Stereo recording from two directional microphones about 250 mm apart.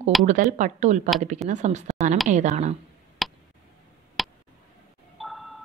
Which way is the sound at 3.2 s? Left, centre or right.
Centre.